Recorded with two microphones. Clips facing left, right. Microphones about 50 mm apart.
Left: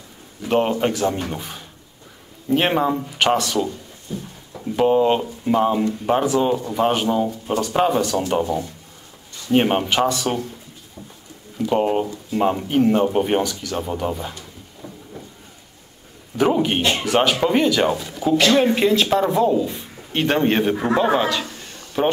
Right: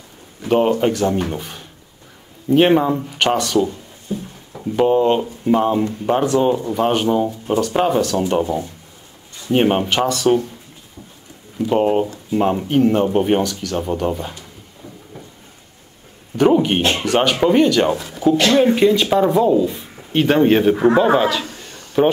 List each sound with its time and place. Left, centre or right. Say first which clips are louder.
0.5 s speech: right 3 dB; centre
4.1 s a sound: right 5 dB; centre
4.7 s speech: right 2 dB; centre
11.7 s speech: right 3 dB; centre
13.4 s speech: right 3 dB; centre
16.3 s speech: right 4 dB; centre
20.7 s speech: right 6 dB; centre
21.0 s speech: right 3 dB; centre
22.0 s speech: right 5 dB; centre